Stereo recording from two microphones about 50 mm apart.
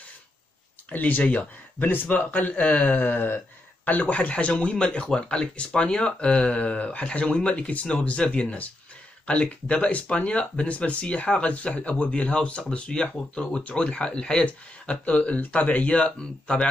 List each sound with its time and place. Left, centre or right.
0.8 s a man's voice: left
1.9 s a man's voice: left
10.4 s speech: centre